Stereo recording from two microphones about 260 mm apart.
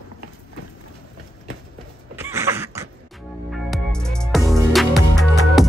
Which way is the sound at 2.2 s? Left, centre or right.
Centre.